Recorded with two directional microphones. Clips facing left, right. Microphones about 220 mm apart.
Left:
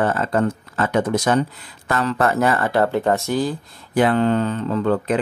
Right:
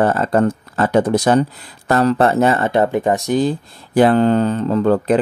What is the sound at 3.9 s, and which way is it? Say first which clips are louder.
Speech: right 4 dB; 35° right (ahead or behind).